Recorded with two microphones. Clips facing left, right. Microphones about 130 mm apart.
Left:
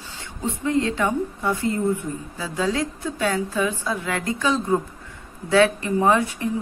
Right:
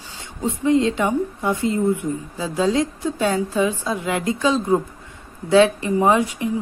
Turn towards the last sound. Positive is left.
turn(degrees=-15)  # may be behind; listen again after turning